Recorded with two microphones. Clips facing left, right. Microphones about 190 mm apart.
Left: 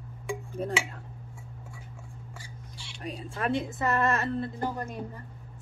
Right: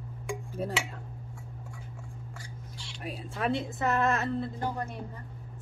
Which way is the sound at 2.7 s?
Centre (ahead or behind).